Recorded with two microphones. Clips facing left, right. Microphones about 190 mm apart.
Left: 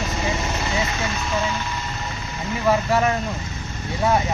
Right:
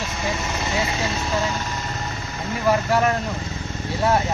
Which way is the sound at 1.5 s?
40° right (ahead or behind).